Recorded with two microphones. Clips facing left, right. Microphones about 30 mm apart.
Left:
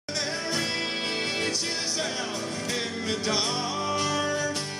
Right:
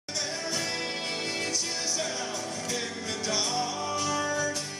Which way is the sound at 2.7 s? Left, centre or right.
Left.